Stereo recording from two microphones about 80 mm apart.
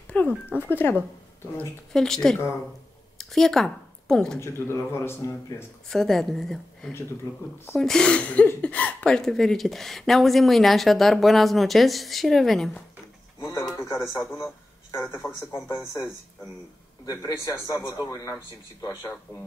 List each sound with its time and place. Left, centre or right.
0.1 s a sound: left
0.5 s speech: left
2.0 s a woman's voice: centre
4.4 s speech: left
5.9 s a woman's voice: centre
13.9 s speech: left
15.5 s speech: left
17.0 s a man's voice: left